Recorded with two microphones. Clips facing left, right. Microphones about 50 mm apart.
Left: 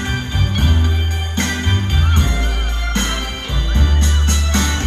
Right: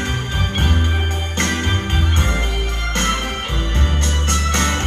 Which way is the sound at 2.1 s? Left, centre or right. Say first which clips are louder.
Even; right.